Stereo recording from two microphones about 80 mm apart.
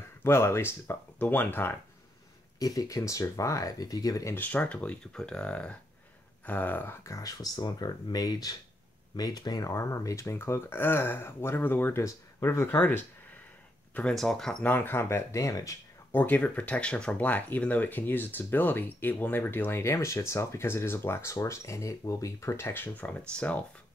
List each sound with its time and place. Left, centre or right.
0.2 s speech: left
2.6 s speech: left
4.4 s speech: left
7.1 s speech: left
12.0 s speech: left
14.1 s speech: centre
14.6 s speech: left
16.1 s speech: left